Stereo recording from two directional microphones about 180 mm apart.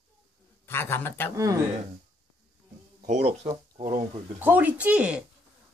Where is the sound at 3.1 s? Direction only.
40° right (ahead or behind).